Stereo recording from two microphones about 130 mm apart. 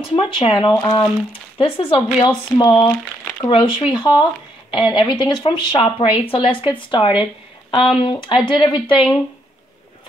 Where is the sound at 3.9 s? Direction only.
40° left (ahead or behind).